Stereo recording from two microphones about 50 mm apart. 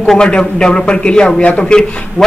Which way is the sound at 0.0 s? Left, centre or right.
Centre.